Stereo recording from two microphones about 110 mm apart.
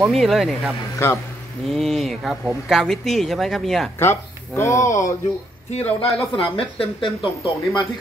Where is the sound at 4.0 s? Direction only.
25° left (ahead or behind).